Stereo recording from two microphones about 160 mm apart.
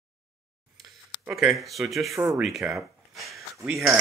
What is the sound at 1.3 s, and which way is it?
Speech, centre (ahead or behind).